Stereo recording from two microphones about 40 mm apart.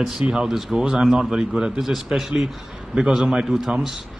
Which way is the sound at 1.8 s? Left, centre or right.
Centre.